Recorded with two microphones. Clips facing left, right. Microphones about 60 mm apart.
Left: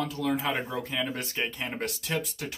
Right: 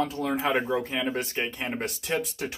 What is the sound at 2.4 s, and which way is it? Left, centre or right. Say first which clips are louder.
Speech: right 4 dB; right.